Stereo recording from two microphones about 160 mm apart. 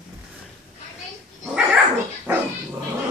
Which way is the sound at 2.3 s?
10° right (ahead or behind).